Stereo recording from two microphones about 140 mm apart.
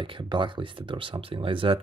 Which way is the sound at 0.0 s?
35° right (ahead or behind).